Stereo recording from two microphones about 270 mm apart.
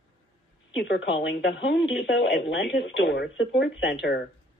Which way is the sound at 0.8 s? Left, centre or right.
Left.